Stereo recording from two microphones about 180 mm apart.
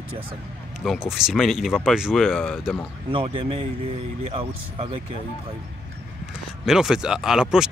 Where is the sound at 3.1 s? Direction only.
30° right (ahead or behind).